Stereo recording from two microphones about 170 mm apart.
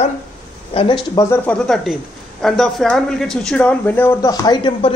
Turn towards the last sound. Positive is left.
turn(degrees=25)  # may be behind; listen again after turning